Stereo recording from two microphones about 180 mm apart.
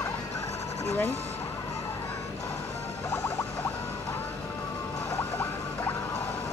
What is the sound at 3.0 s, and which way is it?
Music, 15° left (ahead or behind).